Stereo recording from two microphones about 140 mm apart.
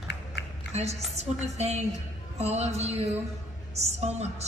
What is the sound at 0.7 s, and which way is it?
A woman's voice, 50° right (ahead or behind).